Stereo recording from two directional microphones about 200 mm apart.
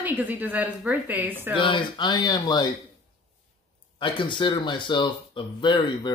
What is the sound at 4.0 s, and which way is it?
Speech, 25° left (ahead or behind).